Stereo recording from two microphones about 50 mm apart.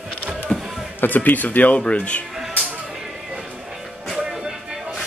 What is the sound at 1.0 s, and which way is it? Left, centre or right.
Speech, left.